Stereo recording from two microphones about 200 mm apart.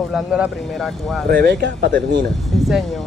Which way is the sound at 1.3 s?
55° right (ahead or behind).